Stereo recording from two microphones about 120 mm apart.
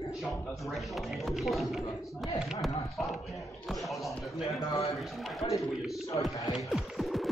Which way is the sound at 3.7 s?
Centre (ahead or behind).